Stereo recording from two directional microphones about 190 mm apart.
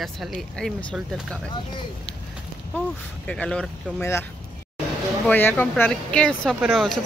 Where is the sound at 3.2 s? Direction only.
5° left (ahead or behind).